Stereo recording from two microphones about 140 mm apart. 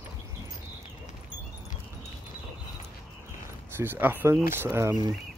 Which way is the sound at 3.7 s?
15° right (ahead or behind).